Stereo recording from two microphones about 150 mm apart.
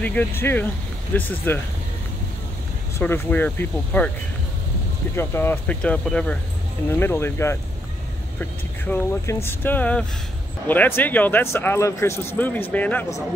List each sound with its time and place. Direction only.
0.0 s speech: 10° left (ahead or behind)
3.0 s speech: 10° left (ahead or behind)
5.1 s speech: 15° left (ahead or behind)